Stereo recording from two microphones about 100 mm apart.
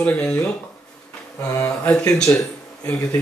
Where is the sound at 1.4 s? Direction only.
30° left (ahead or behind).